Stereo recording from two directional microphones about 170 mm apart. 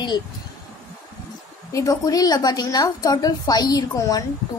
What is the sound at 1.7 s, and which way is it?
A woman's voice, 20° left (ahead or behind).